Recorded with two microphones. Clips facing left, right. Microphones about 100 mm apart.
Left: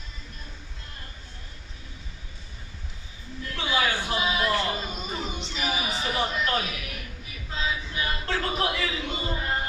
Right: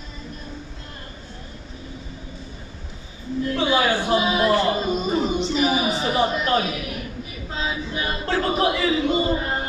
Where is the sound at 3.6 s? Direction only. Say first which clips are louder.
Right 5 dB; 35° right (ahead or behind).